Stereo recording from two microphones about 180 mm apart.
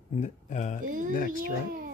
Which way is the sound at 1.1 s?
50° left (ahead or behind).